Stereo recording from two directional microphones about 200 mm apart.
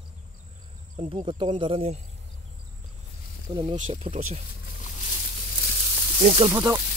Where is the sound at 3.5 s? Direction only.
25° right (ahead or behind).